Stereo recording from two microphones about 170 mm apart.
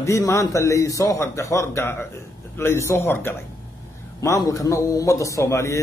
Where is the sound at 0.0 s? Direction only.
20° left (ahead or behind).